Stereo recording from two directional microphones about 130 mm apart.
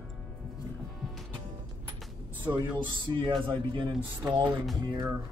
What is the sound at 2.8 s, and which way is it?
Speech, 40° right (ahead or behind).